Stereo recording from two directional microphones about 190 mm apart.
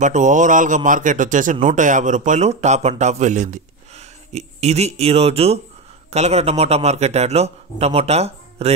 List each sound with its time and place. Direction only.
0.0 s a man's voice: 40° right (ahead or behind)